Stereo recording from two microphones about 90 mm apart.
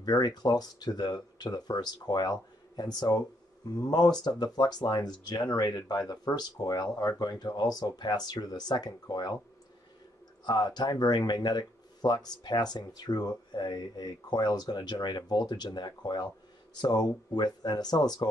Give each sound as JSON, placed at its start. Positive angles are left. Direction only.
{"t": 0.0, "sound": "speech", "side_deg": 50}
{"t": 10.4, "sound": "speech", "side_deg": 55}